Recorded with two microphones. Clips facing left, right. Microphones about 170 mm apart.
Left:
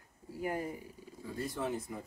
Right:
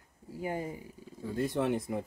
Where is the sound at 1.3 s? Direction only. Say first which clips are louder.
Right 6 dB; 70° right (ahead or behind).